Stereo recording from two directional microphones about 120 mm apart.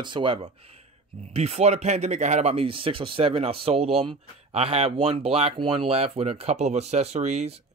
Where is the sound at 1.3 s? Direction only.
60° right (ahead or behind).